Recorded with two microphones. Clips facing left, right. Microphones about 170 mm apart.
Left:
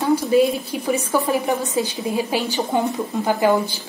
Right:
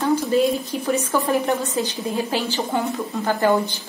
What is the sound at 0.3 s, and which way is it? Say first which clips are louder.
Speech: left 2 dB; 10° left (ahead or behind).